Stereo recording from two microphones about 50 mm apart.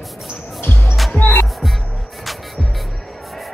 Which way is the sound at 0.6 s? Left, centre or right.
Left.